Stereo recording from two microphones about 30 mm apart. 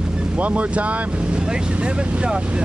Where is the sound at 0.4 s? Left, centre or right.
Right.